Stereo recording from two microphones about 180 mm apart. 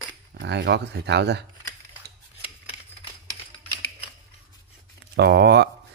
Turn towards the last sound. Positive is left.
turn(degrees=-65)  # may be behind; listen again after turning